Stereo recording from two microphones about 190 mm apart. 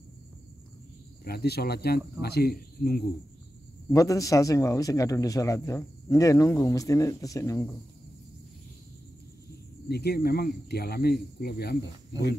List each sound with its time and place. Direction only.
1.2 s speech: 55° left (ahead or behind)
3.9 s speech: 15° left (ahead or behind)
9.8 s speech: 60° left (ahead or behind)